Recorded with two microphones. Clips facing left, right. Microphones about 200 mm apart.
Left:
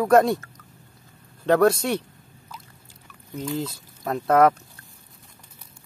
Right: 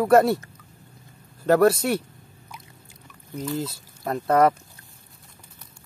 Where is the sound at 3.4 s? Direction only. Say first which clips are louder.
Even; 5° right (ahead or behind).